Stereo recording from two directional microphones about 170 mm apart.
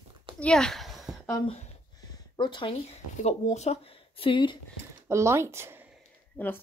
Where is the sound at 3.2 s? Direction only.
40° left (ahead or behind).